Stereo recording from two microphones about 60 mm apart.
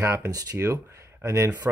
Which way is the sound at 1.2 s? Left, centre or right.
Right.